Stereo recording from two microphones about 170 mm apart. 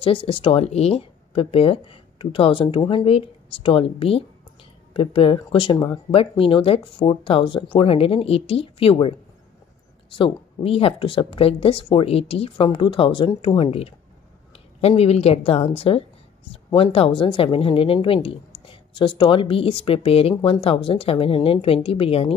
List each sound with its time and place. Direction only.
0.0 s speech: 30° left (ahead or behind)
10.1 s speech: 30° left (ahead or behind)